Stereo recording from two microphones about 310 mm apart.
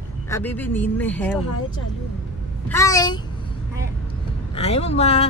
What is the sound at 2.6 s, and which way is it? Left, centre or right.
Speech, centre.